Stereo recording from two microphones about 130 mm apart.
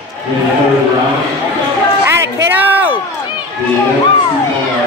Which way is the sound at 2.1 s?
15° right (ahead or behind).